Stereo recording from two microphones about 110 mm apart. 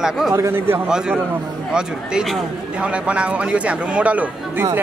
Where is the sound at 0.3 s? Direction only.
25° right (ahead or behind).